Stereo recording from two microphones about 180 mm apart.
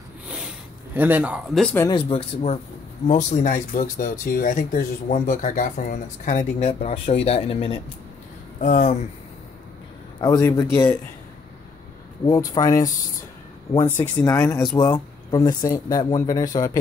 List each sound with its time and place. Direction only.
0.9 s speech: 10° right (ahead or behind)
1.8 s speech: 25° left (ahead or behind)
8.5 s speech: 45° left (ahead or behind)
10.2 s a man's voice: 20° left (ahead or behind)
12.3 s speech: 20° left (ahead or behind)
13.9 s a man's voice: 5° left (ahead or behind)